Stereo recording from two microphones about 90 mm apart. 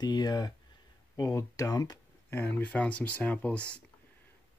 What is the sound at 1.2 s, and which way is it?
Speech, 35° left (ahead or behind).